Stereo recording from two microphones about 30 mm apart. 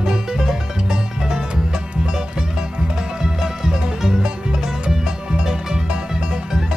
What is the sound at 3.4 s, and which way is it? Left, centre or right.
Music, centre.